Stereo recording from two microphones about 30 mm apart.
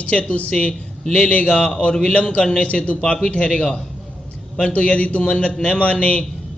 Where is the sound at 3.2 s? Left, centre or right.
Left.